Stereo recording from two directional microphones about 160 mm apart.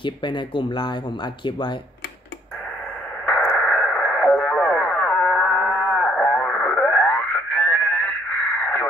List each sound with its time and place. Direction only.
0.0 s speech: 30° left (ahead or behind)
3.3 s radio: 5° left (ahead or behind)